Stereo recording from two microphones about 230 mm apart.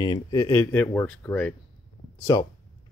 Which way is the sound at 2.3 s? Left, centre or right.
Centre.